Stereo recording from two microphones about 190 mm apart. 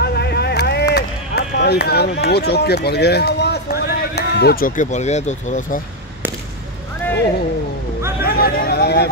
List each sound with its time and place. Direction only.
0.0 s a sound: 60° left (ahead or behind)
0.9 s speech: 60° left (ahead or behind); by 5.8 s 40° left (ahead or behind)
8.2 s speech: 50° left (ahead or behind)